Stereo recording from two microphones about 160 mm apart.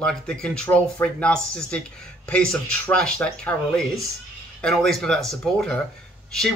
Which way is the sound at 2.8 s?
10° left (ahead or behind).